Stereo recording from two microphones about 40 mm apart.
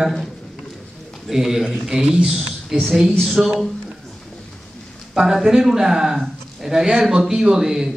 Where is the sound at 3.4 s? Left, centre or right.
Right.